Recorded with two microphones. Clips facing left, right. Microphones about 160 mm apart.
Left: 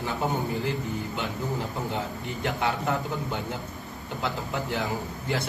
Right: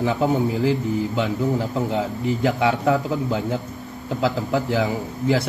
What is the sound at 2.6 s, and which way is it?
A man's voice, 90° right.